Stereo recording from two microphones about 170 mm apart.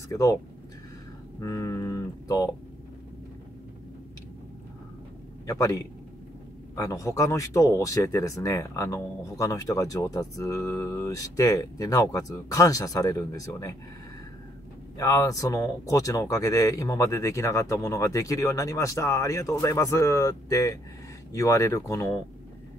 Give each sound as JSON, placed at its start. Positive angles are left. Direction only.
{"t": 0.1, "sound": "speech", "side_deg": 20}
{"t": 1.4, "sound": "speech", "side_deg": 20}
{"t": 5.5, "sound": "speech", "side_deg": 20}
{"t": 15.0, "sound": "speech", "side_deg": 20}